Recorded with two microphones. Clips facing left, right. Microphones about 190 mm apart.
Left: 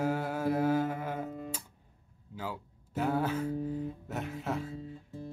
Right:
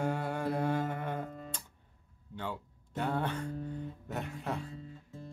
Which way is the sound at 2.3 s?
5° left (ahead or behind).